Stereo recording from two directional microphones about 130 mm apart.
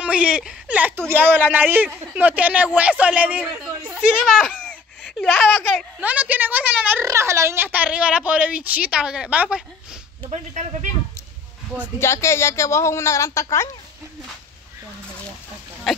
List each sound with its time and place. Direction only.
0.0 s a woman's voice: 10° right (ahead or behind)
4.3 s baby laughter: 5° left (ahead or behind)
5.9 s a woman's voice: 10° right (ahead or behind)
7.1 s a woman's voice: 20° right (ahead or behind)
10.3 s speech: 65° right (ahead or behind)
12.0 s a woman's voice: 20° left (ahead or behind)